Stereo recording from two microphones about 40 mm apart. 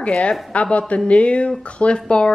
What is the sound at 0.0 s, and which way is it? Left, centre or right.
A woman's voice, left.